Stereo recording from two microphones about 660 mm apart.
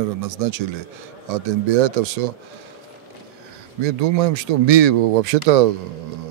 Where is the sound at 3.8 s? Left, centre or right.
Right.